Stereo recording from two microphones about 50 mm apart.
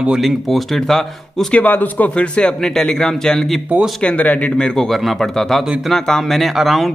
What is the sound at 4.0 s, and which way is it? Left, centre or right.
Speech, left.